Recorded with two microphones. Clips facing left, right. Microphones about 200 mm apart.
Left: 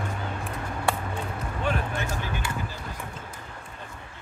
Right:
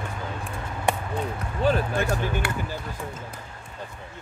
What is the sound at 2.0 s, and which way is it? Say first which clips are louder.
Speech: right 6 dB; 65° right (ahead or behind).